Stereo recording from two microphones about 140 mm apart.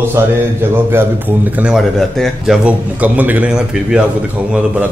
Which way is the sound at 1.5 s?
5° right (ahead or behind).